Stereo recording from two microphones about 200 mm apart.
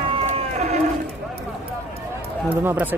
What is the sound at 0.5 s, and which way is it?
Livestock, 35° right (ahead or behind).